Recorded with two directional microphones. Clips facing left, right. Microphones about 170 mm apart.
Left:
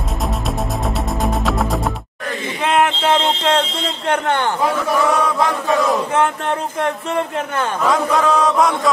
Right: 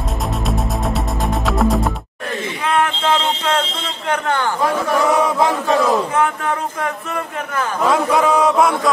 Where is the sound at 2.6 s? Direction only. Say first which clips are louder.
Left 2 dB; 20° left (ahead or behind).